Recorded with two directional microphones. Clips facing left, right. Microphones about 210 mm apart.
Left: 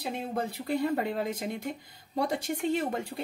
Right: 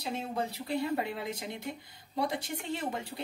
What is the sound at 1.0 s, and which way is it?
Speech, 45° left (ahead or behind).